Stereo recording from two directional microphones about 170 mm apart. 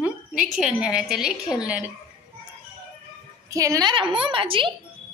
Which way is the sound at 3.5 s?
20° right (ahead or behind).